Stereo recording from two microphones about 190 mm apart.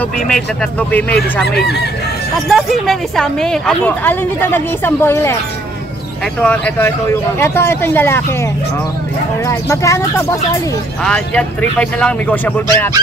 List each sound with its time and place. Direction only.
0.3 s speech: 5° left (ahead or behind)
6.4 s speech: 10° left (ahead or behind)
9.5 s speech: 15° left (ahead or behind)